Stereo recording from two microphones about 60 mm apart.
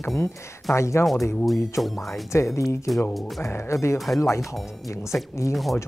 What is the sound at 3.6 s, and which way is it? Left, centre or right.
Speech, left.